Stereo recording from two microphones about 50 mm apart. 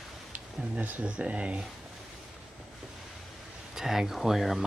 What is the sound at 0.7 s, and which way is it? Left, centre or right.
Speech, right.